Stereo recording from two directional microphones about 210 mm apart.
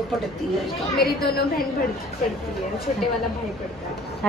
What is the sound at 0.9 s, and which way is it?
Speech, 50° left (ahead or behind).